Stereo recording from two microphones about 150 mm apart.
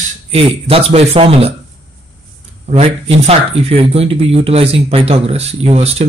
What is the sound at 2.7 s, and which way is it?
Speech, 45° right (ahead or behind).